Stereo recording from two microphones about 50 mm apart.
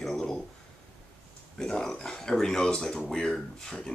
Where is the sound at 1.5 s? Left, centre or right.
Centre.